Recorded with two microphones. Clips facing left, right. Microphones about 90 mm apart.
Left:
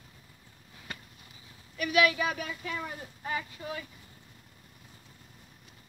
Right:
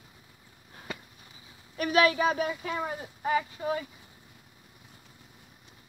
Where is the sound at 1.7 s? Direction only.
35° right (ahead or behind).